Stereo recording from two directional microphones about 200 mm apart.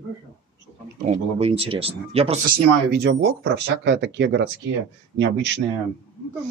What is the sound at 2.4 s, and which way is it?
Speech, 50° right (ahead or behind).